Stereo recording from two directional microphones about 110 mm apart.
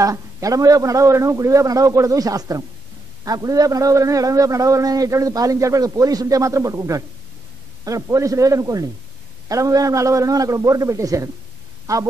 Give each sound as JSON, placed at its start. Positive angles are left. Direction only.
{"t": 0.0, "sound": "a man's voice", "side_deg": -30}